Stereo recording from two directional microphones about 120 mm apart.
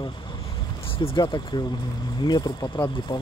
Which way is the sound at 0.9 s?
50° left (ahead or behind).